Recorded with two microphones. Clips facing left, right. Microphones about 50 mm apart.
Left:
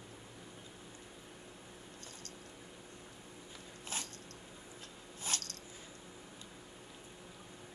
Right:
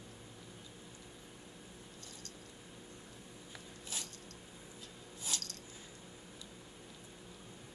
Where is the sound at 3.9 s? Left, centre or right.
Left.